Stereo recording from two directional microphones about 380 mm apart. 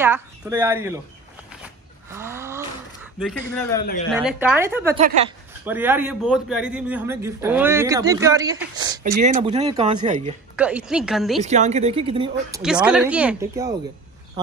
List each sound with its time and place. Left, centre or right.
0.0 s speech: centre
1.5 s a sound: centre
4.1 s speech: centre
10.5 s speech: centre
11.4 s speech: centre
12.6 s speech: centre